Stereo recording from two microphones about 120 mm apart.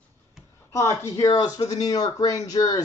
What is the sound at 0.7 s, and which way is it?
Speech, 25° left (ahead or behind).